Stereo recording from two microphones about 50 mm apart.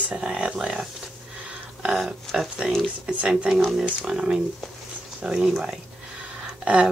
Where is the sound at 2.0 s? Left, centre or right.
Centre.